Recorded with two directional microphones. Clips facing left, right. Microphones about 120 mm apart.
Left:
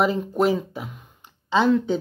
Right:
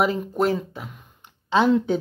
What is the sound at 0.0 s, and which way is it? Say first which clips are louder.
Speech: left 1 dB; 5° right (ahead or behind).